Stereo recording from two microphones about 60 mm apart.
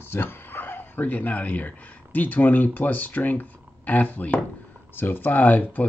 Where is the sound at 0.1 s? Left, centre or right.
Left.